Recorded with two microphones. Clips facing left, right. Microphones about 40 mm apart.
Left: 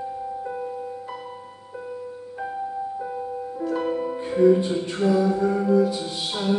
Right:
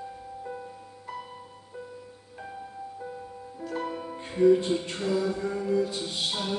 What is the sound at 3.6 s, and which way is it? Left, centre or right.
Music, centre.